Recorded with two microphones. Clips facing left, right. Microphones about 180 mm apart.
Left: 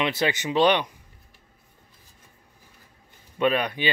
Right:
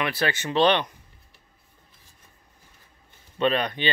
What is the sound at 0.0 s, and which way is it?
Speech, 20° left (ahead or behind).